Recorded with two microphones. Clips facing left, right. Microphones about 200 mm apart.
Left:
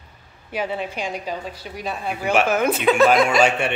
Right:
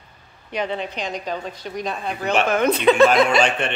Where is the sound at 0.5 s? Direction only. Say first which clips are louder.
Even; 5° left (ahead or behind).